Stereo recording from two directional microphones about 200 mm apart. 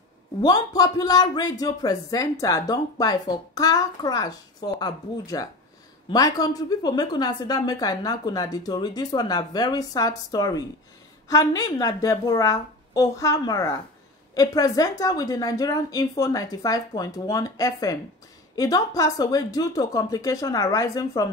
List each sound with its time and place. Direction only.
0.4 s a man's voice: 20° left (ahead or behind)